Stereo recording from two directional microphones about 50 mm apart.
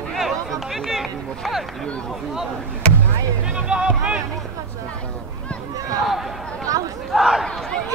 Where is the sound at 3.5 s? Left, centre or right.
Centre.